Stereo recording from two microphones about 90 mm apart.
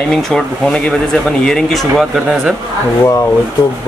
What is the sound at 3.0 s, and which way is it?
Speech, 35° left (ahead or behind).